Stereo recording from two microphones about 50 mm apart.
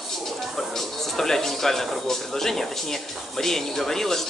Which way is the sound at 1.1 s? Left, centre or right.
Centre.